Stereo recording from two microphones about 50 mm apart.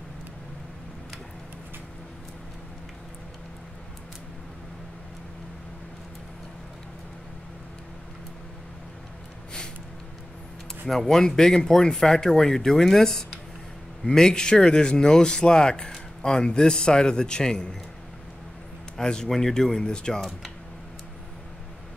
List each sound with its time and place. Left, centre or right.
10.9 s speech: centre
18.9 s speech: centre
20.2 s speech: centre